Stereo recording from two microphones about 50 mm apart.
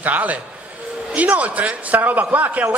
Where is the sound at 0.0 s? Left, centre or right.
Right.